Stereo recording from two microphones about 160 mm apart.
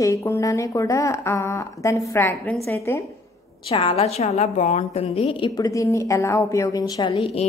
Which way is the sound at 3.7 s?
35° left (ahead or behind).